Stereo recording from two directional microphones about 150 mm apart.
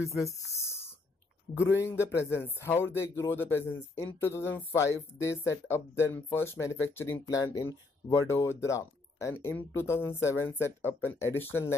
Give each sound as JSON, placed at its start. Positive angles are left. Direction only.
{"t": 0.2, "sound": "speech", "side_deg": 20}